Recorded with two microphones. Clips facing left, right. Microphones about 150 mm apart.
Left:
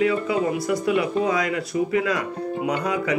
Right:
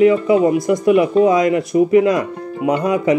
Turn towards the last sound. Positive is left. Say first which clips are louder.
# right 8 dB
turn(degrees=-20)  # may be behind; listen again after turning